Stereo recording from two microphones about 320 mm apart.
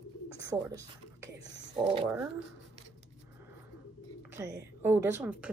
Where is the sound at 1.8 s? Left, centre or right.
Centre.